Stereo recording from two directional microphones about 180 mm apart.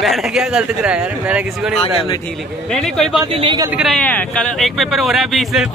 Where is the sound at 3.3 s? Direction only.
30° right (ahead or behind).